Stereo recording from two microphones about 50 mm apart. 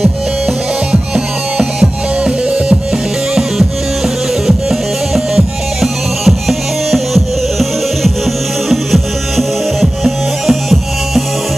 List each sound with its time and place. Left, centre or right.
1.1 s music: right
4.5 s music: centre
8.6 s music: centre